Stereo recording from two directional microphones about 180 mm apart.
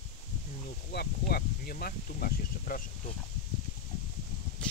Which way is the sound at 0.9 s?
60° left (ahead or behind).